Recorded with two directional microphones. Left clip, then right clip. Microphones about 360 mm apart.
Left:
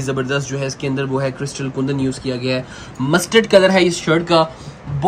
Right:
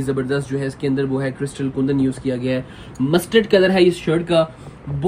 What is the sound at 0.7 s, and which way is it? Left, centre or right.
Speech, centre.